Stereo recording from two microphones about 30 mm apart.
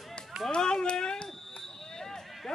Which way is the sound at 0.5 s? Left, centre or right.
Left.